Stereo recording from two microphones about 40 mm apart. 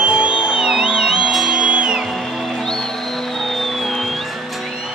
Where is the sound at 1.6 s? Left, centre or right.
Right.